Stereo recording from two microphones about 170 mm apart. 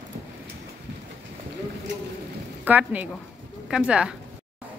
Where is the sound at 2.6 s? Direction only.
10° right (ahead or behind).